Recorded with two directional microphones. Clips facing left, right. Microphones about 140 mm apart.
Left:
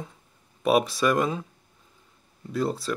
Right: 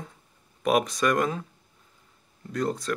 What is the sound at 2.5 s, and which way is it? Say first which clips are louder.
Speech: left 1 dB; 5° left (ahead or behind).